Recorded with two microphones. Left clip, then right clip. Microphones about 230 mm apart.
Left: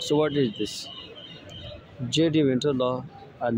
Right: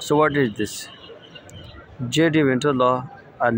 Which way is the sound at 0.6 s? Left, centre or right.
Left.